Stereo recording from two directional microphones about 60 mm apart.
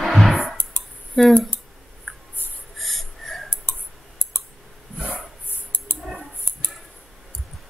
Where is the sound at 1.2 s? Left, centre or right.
Centre.